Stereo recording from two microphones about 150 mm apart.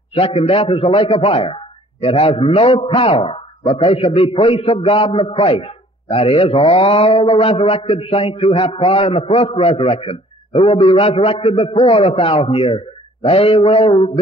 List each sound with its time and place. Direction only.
0.1 s a man's voice: 40° left (ahead or behind)